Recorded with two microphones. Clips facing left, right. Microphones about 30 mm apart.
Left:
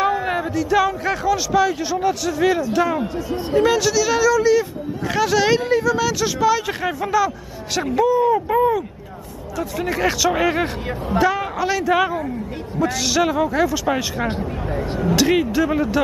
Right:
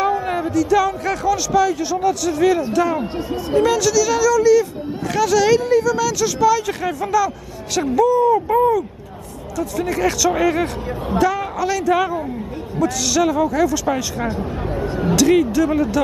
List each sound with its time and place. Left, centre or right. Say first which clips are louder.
0.3 s a man's voice: right 2 dB; centre